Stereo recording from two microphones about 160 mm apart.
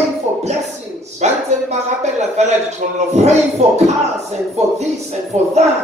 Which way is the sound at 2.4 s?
45° right (ahead or behind).